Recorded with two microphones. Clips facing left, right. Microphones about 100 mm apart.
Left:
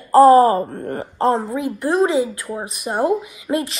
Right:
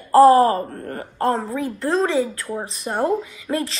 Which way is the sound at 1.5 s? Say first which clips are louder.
Left 3 dB; 15° left (ahead or behind).